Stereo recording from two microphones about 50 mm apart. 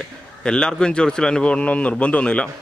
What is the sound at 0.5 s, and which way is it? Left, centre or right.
A man's voice, centre.